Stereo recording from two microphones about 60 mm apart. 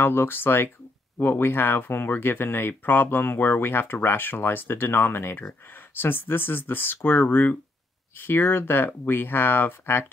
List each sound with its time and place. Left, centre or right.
0.0 s speech: left